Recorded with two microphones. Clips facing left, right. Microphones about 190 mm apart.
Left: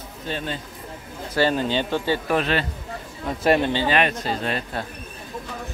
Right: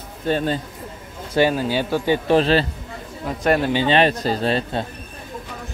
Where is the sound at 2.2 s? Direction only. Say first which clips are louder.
Right 6 dB; 30° right (ahead or behind).